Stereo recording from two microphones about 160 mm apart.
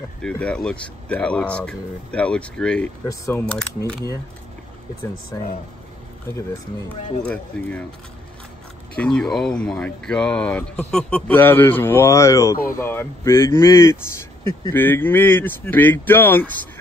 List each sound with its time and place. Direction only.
0.2 s speech: 5° left (ahead or behind)
3.1 s speech: 20° left (ahead or behind)
3.4 s speech: 5° left (ahead or behind)
5.3 s speech: 20° left (ahead or behind)
7.5 s speech: 5° left (ahead or behind)
8.9 s speech: 5° left (ahead or behind)